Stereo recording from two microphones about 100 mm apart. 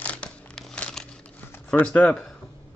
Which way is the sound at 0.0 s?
10° left (ahead or behind).